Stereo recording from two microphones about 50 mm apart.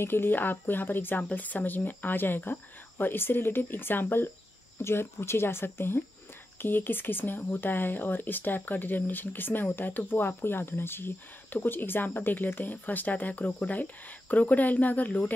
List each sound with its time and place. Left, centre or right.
0.0 s speech: left
4.7 s speech: left